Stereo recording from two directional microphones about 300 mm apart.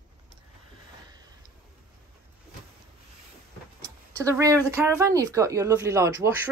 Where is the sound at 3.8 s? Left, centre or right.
Centre.